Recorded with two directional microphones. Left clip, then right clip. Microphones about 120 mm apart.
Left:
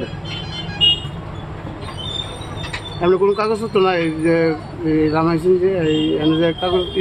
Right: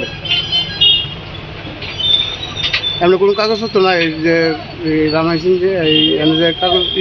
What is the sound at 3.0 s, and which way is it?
A man's voice, 5° left (ahead or behind).